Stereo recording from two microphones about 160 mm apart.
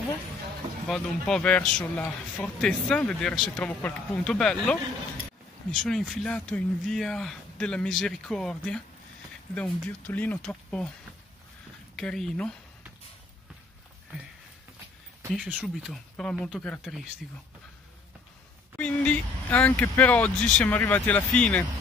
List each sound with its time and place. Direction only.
0.8 s speech: 5° left (ahead or behind)
5.9 s speech: 5° left (ahead or behind)
11.9 s speech: 5° left (ahead or behind)
15.3 s speech: centre (ahead or behind)
18.8 s speech: 10° left (ahead or behind)